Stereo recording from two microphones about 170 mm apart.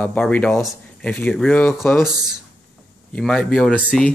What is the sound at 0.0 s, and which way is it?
Speech, 10° left (ahead or behind).